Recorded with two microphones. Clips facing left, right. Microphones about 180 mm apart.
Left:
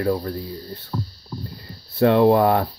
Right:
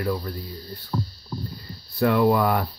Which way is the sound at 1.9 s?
25° left (ahead or behind).